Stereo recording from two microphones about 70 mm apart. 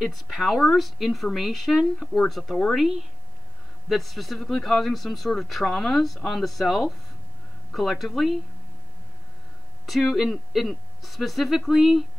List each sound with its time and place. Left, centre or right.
0.0 s speech: centre
3.9 s speech: centre
9.8 s speech: centre